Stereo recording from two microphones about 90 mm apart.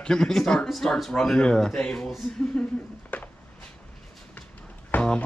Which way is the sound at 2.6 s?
20° left (ahead or behind).